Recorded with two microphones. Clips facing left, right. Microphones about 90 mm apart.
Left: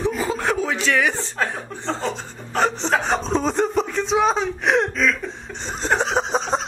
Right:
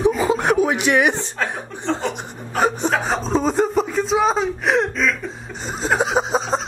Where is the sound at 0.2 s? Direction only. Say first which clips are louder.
Right 5 dB; 15° right (ahead or behind).